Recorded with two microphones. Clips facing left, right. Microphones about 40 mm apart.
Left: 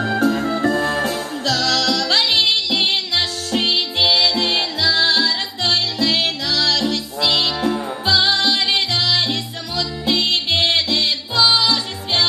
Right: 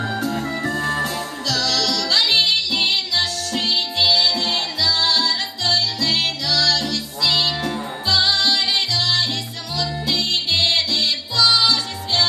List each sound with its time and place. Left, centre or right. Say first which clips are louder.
0.0 s music: left 5 dB; left